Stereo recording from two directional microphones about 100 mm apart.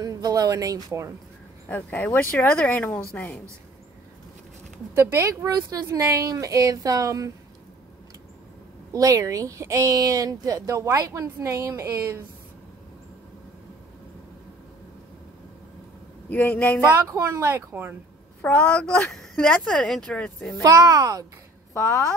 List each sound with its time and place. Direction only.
0.0 s speech: 35° right (ahead or behind)
1.7 s speech: 15° left (ahead or behind)
4.9 s speech: 25° right (ahead or behind)
8.9 s speech: 35° right (ahead or behind)
16.3 s speech: 15° left (ahead or behind)
17.1 s speech: 30° right (ahead or behind)
18.4 s speech: 10° left (ahead or behind)
20.6 s speech: 40° right (ahead or behind)